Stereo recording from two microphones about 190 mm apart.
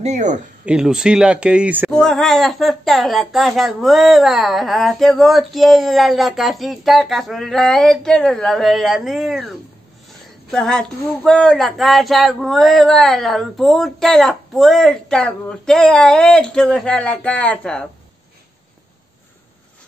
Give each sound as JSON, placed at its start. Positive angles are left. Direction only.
{"t": 0.0, "sound": "speech", "side_deg": -40}
{"t": 0.7, "sound": "speech", "side_deg": -5}
{"t": 10.5, "sound": "speech", "side_deg": 5}